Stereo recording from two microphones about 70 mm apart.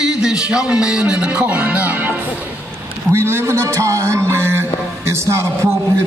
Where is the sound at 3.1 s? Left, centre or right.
Right.